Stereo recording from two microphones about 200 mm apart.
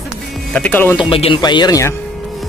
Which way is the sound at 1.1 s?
25° left (ahead or behind).